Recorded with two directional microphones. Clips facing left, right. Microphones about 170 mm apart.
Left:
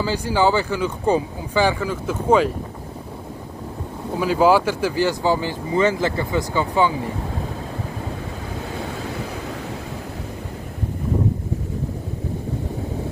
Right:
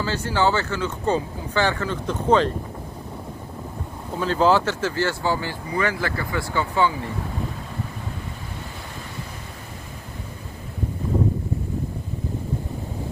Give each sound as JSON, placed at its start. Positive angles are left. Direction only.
{"t": 0.0, "sound": "speech", "side_deg": 15}
{"t": 4.2, "sound": "speech", "side_deg": 10}